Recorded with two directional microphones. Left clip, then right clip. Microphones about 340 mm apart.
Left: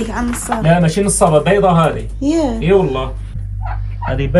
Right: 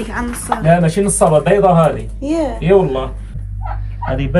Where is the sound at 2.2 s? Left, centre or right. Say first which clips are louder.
Left 2 dB; centre.